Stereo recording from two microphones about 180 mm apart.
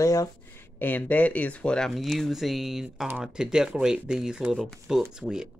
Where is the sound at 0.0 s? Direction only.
20° left (ahead or behind).